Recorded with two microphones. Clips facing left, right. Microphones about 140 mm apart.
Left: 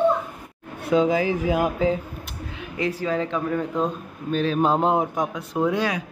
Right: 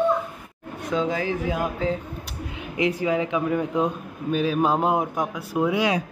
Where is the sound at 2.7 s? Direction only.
15° right (ahead or behind).